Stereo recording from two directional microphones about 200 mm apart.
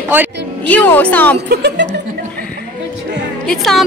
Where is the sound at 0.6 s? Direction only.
10° left (ahead or behind).